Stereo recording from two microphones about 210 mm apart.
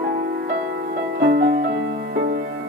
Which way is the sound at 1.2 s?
50° right (ahead or behind).